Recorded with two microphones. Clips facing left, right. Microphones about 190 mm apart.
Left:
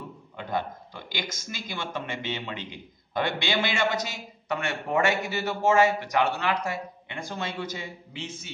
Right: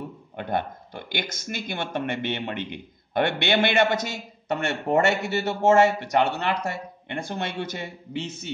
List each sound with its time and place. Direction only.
0.4 s speech: 60° right (ahead or behind)